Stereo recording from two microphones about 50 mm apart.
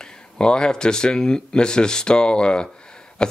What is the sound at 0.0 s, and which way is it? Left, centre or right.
Speech, centre.